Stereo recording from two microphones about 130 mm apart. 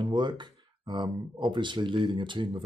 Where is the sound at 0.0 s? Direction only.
35° right (ahead or behind).